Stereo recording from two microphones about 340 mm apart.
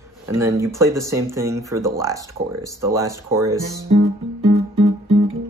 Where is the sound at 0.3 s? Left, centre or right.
Centre.